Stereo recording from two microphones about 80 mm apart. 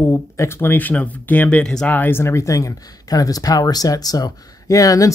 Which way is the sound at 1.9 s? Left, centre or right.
Left.